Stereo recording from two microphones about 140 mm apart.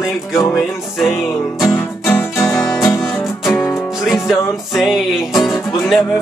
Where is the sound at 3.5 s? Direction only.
15° left (ahead or behind).